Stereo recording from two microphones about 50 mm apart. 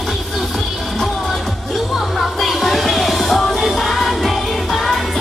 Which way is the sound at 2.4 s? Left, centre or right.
Centre.